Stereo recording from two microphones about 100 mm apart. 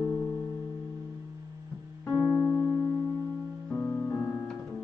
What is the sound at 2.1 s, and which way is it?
Music, 15° right (ahead or behind).